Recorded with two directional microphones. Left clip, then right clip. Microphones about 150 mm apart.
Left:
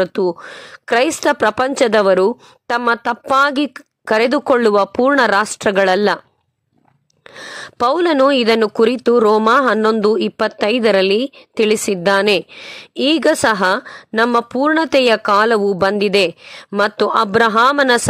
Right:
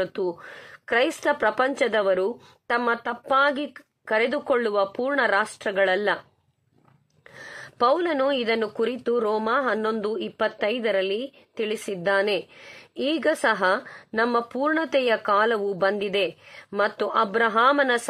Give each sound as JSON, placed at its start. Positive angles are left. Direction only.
{"t": 0.0, "sound": "speech", "side_deg": 45}
{"t": 7.3, "sound": "speech", "side_deg": 40}